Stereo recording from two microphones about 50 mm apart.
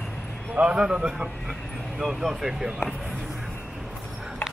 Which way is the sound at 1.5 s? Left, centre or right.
Centre.